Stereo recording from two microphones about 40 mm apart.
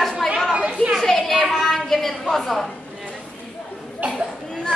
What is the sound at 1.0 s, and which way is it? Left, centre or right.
A woman's voice, centre.